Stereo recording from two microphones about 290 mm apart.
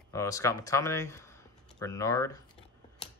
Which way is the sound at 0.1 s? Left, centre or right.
Centre.